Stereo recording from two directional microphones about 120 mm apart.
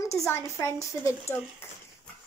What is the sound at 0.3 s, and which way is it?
A child's voice, 20° left (ahead or behind).